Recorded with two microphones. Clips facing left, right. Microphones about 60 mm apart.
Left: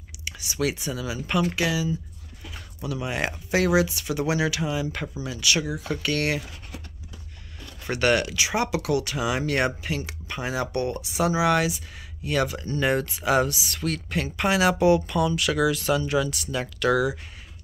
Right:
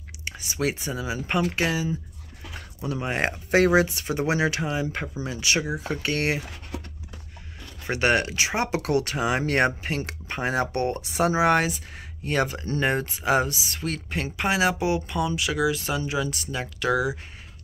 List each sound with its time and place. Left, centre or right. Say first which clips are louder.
0.2 s speech: even; right
7.8 s speech: even; right